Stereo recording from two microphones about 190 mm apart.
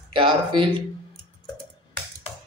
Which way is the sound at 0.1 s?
25° right (ahead or behind).